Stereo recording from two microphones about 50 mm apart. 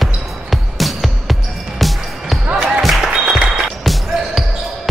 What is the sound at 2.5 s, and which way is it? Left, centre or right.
Music, centre.